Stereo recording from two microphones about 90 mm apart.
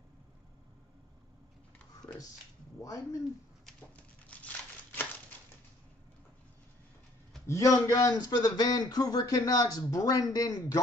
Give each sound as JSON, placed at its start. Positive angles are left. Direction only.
{"t": 2.8, "sound": "speech", "side_deg": 40}
{"t": 3.9, "sound": "crumpling", "side_deg": 15}
{"t": 7.4, "sound": "speech", "side_deg": 35}